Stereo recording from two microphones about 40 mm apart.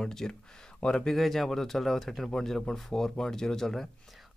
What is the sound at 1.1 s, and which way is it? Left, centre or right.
Speech, centre.